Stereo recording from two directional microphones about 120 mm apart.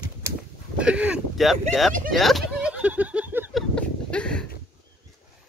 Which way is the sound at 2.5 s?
10° right (ahead or behind).